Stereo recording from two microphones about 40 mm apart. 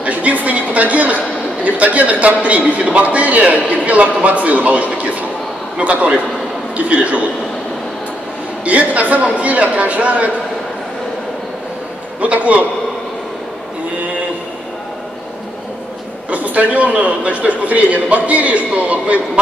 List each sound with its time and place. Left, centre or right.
0.0 s a man's voice: right
8.6 s a man's voice: right
12.2 s a man's voice: right
16.3 s a man's voice: right